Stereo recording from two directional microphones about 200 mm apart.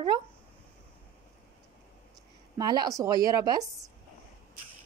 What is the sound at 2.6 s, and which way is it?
Speech, 20° right (ahead or behind).